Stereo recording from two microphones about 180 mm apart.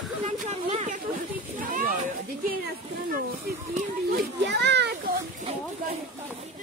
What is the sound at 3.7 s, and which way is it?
A child's voice, 60° right (ahead or behind).